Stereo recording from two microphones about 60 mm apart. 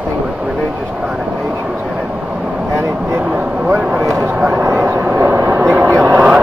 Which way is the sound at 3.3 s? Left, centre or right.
Centre.